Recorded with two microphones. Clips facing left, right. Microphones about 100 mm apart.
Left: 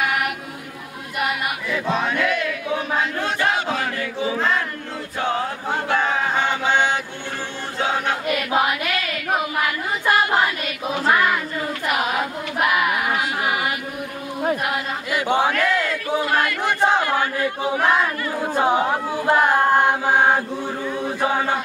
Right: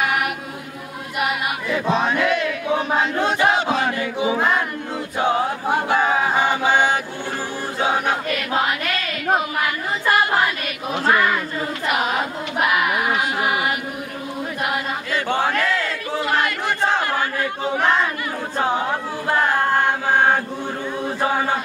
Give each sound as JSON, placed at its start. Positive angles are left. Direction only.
{"t": 1.7, "sound": "chant", "side_deg": -25}
{"t": 7.8, "sound": "choir", "side_deg": -15}
{"t": 8.3, "sound": "choir", "side_deg": 15}
{"t": 11.1, "sound": "a sound", "side_deg": 10}
{"t": 15.1, "sound": "crowd", "side_deg": 15}
{"t": 15.6, "sound": "chant", "side_deg": 15}
{"t": 16.3, "sound": "battle cry", "side_deg": -20}
{"t": 16.6, "sound": "battle cry", "side_deg": 15}
{"t": 17.6, "sound": "a sound", "side_deg": 10}
{"t": 18.5, "sound": "choir", "side_deg": 15}
{"t": 21.2, "sound": "chant", "side_deg": -5}